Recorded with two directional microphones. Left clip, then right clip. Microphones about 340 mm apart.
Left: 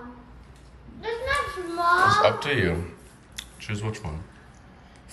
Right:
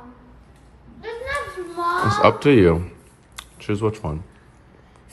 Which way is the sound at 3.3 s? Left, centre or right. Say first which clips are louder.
Right 8 dB; centre.